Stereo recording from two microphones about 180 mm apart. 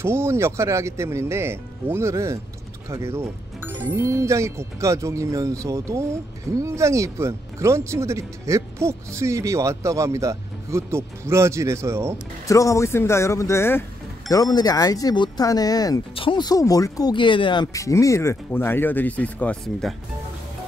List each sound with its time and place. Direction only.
0.0 s speech: 15° right (ahead or behind)
12.4 s speech: 15° left (ahead or behind); by 20.0 s centre (ahead or behind)